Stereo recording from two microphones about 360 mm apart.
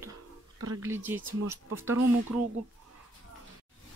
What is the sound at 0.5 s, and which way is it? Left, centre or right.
Speech, right.